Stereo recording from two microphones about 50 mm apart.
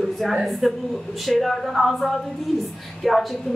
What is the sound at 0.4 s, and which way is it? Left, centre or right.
Speech, centre.